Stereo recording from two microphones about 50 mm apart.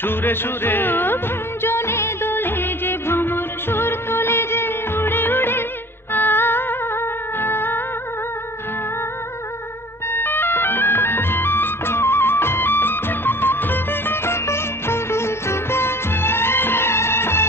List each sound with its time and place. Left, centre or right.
0.0 s music: left
10.1 s music: left